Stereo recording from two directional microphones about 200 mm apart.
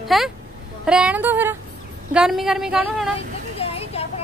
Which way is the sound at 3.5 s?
30° left (ahead or behind).